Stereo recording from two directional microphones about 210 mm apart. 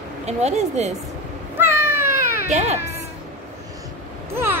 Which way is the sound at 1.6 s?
10° right (ahead or behind).